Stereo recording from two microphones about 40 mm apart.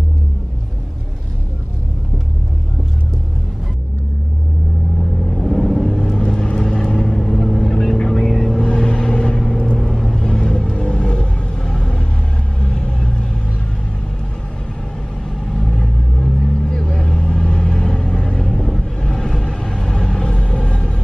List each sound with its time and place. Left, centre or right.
5.2 s vehicle: centre
6.2 s vehicle: left
15.4 s vehicle: centre